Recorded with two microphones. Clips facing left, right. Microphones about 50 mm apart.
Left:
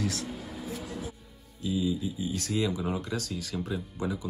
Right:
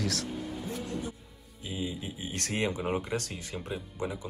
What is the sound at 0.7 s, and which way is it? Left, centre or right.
Music, centre.